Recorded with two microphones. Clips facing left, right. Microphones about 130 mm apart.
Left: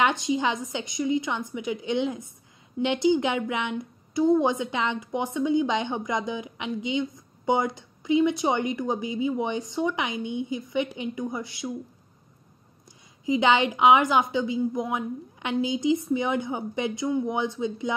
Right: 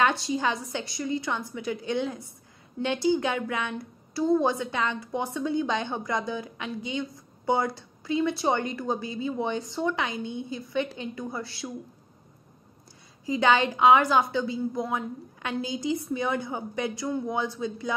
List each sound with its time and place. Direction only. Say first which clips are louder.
0.0 s a woman's voice: left 1 dB; 20° left (ahead or behind)
13.2 s a woman's voice: left 1 dB; 20° left (ahead or behind)